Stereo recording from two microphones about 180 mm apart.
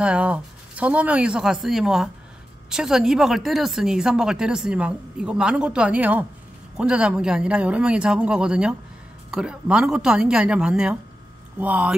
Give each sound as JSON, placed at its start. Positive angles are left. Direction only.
{"t": 0.0, "sound": "speech", "side_deg": -5}